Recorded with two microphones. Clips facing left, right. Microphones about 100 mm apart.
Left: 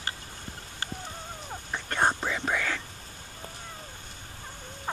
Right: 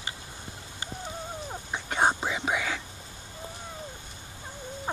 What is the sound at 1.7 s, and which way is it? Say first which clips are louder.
Whispering: right 1 dB; 10° right (ahead or behind).